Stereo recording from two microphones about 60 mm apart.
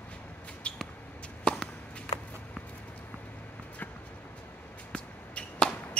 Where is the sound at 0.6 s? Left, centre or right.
Centre.